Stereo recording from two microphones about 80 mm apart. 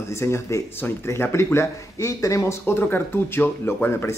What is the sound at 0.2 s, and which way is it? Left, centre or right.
Speech, left.